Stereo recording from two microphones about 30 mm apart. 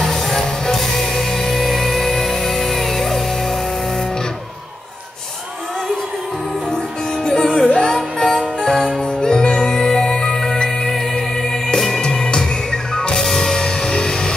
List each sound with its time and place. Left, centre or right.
0.1 s music: centre
7.2 s music: centre
9.0 s music: left
9.6 s music: centre
13.2 s music: centre